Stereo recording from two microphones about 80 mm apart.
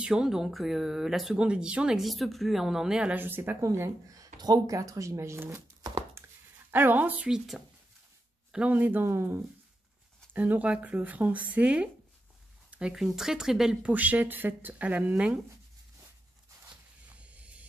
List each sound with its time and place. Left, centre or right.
0.0 s speech: centre
2.0 s speech: centre
3.2 s speech: right
4.1 s speech: right
6.2 s a sound: right
6.7 s speech: right
7.2 s speech: centre
8.5 s speech: centre
9.0 s speech: right
10.3 s speech: centre
12.9 s speech: centre
13.9 s speech: right
17.2 s a sound: centre